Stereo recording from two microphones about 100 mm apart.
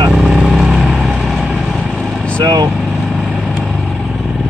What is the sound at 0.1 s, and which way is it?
Vehicle, 5° right (ahead or behind).